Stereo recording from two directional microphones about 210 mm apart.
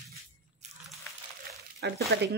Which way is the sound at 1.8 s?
55° right (ahead or behind).